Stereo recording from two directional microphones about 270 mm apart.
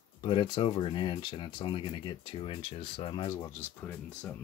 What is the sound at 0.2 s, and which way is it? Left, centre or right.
Speech, centre.